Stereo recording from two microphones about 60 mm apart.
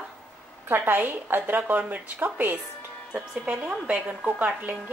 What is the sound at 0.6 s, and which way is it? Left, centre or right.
Speech, right.